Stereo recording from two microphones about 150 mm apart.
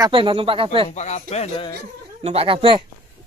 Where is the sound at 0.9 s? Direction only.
50° left (ahead or behind).